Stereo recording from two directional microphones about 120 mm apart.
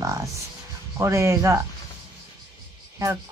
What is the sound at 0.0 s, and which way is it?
Music, 25° right (ahead or behind).